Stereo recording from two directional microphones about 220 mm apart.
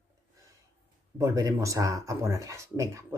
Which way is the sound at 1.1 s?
15° right (ahead or behind).